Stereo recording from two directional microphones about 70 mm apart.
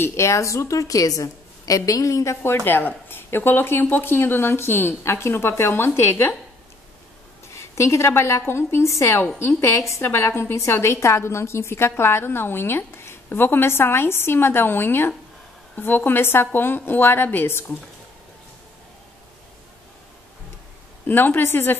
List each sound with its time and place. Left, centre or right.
0.0 s a woman's voice: left
2.4 s a woman's voice: left
7.5 s a woman's voice: left
21.1 s a woman's voice: left